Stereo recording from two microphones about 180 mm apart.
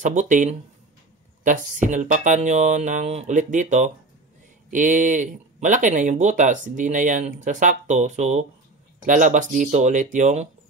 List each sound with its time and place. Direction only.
0.0 s speech: 45° right (ahead or behind)